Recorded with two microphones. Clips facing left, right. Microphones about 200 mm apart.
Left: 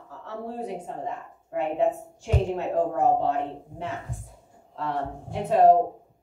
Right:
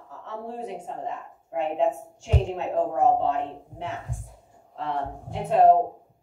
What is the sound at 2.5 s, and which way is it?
Speech, 55° left (ahead or behind).